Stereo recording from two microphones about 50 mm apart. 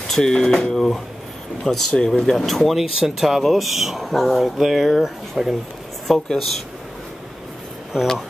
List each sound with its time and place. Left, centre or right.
0.0 s speech: centre
7.9 s speech: centre